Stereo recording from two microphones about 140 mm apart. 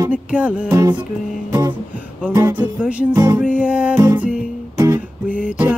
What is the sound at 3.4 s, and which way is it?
Music, 10° right (ahead or behind).